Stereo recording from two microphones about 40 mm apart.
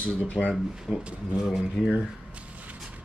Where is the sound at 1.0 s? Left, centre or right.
Right.